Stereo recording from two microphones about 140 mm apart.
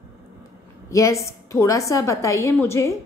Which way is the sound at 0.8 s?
20° left (ahead or behind).